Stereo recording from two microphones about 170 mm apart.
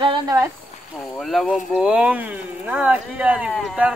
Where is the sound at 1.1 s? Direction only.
Centre (ahead or behind).